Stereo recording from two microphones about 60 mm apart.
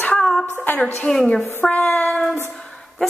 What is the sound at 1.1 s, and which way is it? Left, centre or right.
Speech, centre.